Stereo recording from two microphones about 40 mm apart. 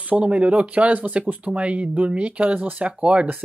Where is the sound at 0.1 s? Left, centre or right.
Right.